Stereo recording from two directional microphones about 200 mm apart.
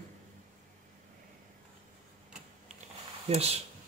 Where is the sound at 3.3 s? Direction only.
30° right (ahead or behind).